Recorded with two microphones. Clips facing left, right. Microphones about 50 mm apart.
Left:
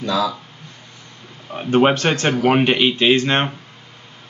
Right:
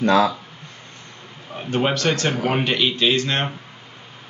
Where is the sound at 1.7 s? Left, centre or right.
Left.